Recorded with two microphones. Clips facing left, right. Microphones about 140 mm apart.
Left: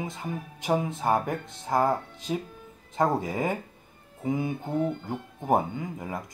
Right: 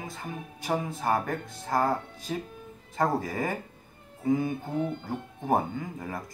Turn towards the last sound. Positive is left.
turn(degrees=20)  # may be behind; listen again after turning